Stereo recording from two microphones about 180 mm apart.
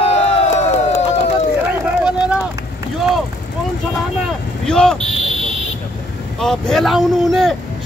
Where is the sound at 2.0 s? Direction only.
5° right (ahead or behind).